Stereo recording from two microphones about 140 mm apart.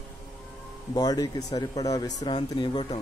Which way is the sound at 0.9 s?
25° left (ahead or behind).